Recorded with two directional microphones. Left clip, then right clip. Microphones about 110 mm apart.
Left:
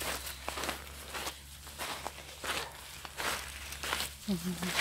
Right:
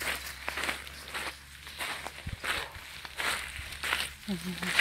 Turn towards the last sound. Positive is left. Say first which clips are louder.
# right 2 dB
turn(degrees=-10)  # may be behind; listen again after turning